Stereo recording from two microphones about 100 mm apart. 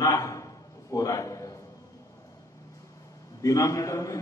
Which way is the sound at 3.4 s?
30° left (ahead or behind).